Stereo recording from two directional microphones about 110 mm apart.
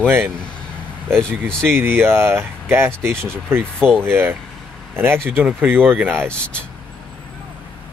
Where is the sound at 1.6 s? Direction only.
20° right (ahead or behind).